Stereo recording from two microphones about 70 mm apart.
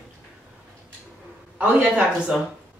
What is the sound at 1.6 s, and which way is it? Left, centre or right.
Speech, centre.